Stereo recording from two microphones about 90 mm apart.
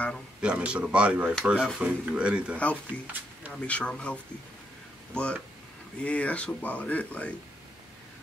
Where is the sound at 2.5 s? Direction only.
15° left (ahead or behind).